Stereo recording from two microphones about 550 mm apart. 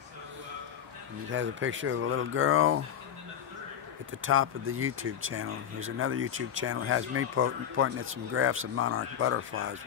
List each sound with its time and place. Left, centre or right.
1.3 s speech: centre
4.2 s speech: right